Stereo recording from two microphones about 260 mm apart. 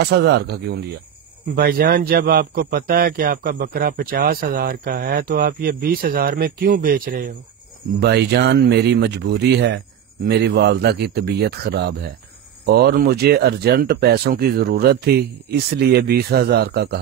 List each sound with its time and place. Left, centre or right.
0.0 s speech: right